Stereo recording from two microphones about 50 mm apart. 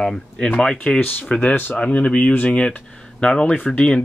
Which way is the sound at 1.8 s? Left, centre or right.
Left.